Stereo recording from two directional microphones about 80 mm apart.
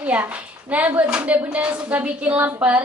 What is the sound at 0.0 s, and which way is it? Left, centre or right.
A woman's voice, centre.